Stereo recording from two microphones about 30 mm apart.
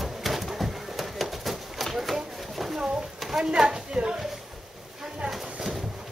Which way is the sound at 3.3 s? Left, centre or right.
Right.